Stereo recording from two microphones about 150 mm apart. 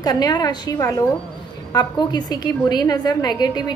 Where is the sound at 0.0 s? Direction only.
25° left (ahead or behind).